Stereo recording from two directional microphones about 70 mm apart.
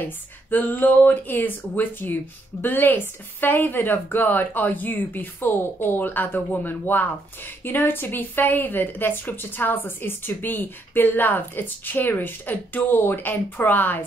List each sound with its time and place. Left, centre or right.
0.5 s a woman's voice: left